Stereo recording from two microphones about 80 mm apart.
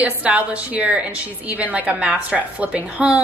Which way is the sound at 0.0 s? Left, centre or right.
Centre.